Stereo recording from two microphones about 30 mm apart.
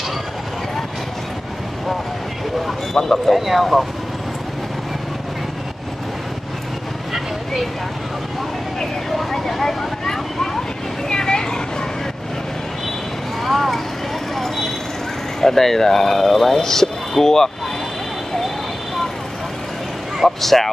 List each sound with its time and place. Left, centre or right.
2.9 s speech: centre
3.3 s speech: centre
9.1 s vehicle: centre
11.1 s a sound: left
13.4 s speech: centre
14.3 s a sound: centre
15.4 s speech: centre
20.2 s speech: centre